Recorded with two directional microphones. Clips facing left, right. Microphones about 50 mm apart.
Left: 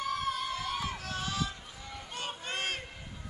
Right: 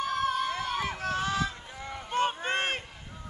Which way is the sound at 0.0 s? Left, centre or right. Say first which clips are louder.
Right 5 dB; right.